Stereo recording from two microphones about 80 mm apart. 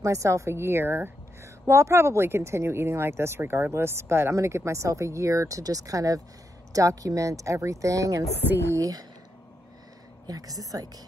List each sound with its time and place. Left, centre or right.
0.0 s a woman's voice: right
10.2 s speech: right